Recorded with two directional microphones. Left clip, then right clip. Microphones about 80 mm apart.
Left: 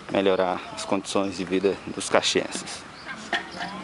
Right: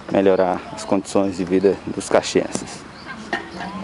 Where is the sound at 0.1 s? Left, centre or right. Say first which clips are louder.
Right 6 dB; centre.